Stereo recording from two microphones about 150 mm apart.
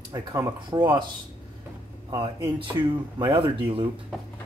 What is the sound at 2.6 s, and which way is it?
Speech, 30° right (ahead or behind).